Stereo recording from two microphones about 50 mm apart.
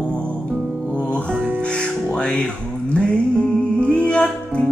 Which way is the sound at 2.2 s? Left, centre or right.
Left.